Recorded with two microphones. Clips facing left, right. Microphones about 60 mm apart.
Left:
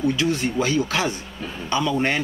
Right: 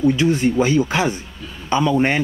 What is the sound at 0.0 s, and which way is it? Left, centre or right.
Speech, right.